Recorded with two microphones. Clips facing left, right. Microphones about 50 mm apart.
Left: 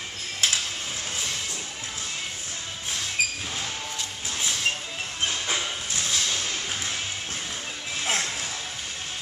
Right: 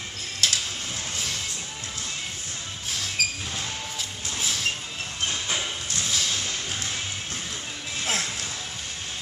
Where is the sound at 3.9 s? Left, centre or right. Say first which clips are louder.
Even; centre.